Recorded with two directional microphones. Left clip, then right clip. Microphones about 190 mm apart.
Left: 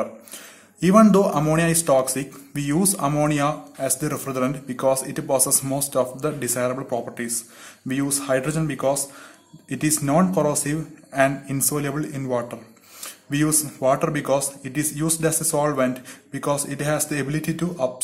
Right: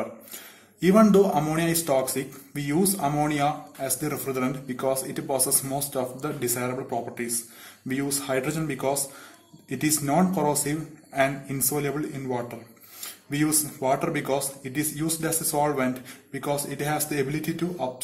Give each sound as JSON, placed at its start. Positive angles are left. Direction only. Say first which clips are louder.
{"t": 0.7, "sound": "a man's voice", "louder": "left 3 dB", "side_deg": 30}